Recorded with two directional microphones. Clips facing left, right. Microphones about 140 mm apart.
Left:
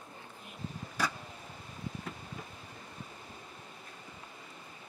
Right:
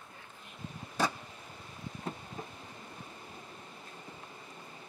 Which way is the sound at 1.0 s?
25° right (ahead or behind).